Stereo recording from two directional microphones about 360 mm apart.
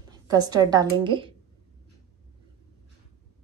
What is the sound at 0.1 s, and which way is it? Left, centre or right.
A woman's voice, centre.